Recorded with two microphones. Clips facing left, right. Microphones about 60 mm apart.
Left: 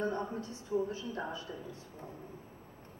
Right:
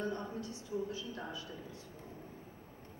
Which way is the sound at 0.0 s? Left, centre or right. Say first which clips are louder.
Left 4 dB; left.